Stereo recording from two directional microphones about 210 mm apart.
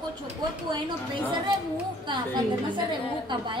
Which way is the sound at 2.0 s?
20° right (ahead or behind).